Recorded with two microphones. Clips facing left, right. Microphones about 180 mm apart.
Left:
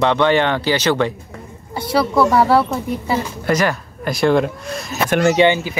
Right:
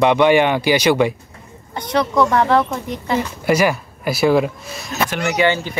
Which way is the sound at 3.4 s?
10° right (ahead or behind).